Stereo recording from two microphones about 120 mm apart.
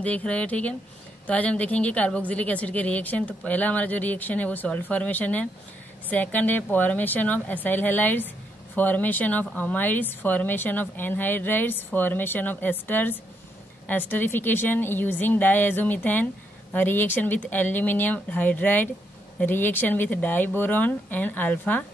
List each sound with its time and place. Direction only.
0.0 s speech: 10° left (ahead or behind)